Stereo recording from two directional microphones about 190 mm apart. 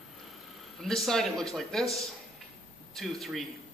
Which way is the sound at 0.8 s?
Centre (ahead or behind).